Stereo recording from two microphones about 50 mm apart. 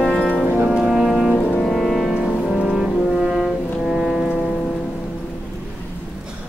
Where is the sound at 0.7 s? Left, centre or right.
Centre.